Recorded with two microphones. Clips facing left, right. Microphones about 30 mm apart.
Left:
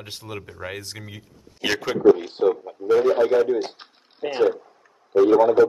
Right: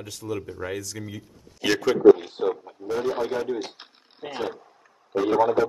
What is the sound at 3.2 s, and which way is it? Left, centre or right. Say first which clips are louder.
Speech: left 8 dB; left.